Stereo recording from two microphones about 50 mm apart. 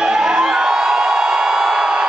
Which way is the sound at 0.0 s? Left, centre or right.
Centre.